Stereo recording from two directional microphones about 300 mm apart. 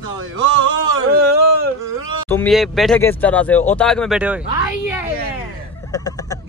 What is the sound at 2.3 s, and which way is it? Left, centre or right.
Speech, centre.